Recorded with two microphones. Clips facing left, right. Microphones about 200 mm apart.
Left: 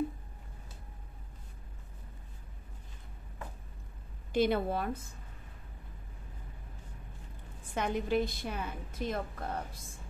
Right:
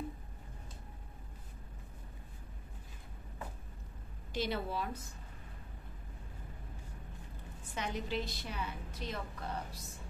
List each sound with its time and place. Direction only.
4.3 s a woman's voice: 55° left (ahead or behind)
7.7 s a woman's voice: 55° left (ahead or behind)